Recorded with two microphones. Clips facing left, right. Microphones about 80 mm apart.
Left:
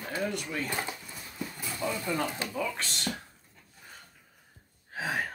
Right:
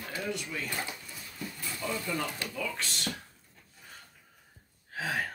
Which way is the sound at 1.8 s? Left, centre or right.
Left.